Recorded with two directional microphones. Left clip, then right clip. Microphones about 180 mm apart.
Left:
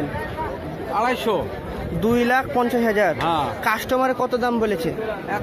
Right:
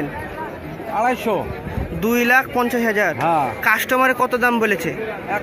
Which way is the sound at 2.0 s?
Centre (ahead or behind).